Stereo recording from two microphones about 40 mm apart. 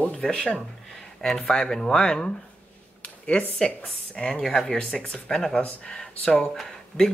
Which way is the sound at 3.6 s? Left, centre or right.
Left.